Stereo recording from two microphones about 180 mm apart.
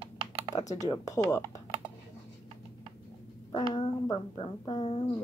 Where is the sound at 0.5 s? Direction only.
20° left (ahead or behind).